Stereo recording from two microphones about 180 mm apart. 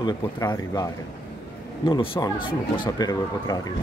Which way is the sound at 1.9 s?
25° left (ahead or behind).